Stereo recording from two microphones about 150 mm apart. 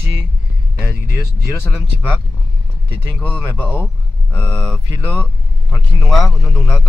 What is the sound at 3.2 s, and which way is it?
Speech, 10° left (ahead or behind).